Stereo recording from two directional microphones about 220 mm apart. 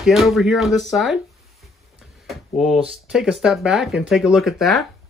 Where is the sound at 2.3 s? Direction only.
Centre (ahead or behind).